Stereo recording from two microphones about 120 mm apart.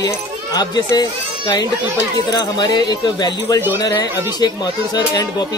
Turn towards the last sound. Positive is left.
turn(degrees=35)  # may be behind; listen again after turning